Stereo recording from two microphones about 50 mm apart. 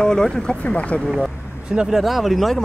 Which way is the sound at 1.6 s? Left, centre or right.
Centre.